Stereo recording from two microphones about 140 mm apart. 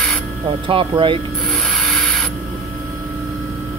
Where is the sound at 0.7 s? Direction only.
40° right (ahead or behind).